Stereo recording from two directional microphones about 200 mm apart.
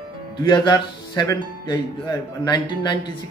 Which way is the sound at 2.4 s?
20° left (ahead or behind).